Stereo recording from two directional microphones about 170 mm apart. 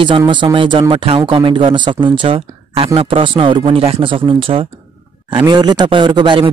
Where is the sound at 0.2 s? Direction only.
30° right (ahead or behind).